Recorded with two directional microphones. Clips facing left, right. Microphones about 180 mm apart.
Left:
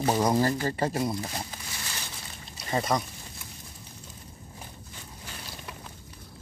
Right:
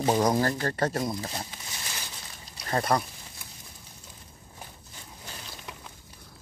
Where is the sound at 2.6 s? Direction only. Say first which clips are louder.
Right 1 dB; 5° left (ahead or behind).